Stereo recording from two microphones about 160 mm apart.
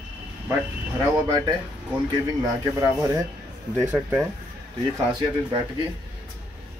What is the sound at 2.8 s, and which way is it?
Speech, 20° right (ahead or behind).